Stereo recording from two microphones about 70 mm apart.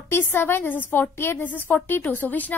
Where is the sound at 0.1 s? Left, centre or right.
Left.